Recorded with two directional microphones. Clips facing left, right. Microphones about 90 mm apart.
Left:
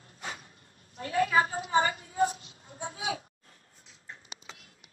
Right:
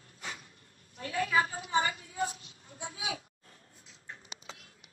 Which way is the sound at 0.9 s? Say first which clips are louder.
Left 4 dB; 35° left (ahead or behind).